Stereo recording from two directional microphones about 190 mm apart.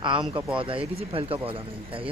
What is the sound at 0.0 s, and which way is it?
Speech, 25° right (ahead or behind).